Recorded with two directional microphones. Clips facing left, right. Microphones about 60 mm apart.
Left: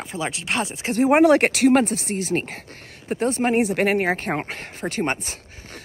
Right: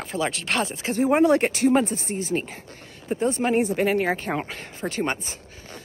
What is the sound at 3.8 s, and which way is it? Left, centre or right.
Speech, left.